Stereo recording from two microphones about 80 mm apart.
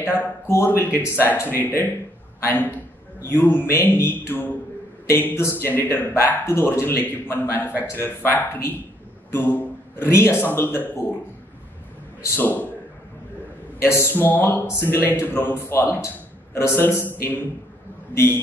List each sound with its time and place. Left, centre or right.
0.0 s a man's voice: left
12.4 s a man's voice: left
13.7 s a man's voice: left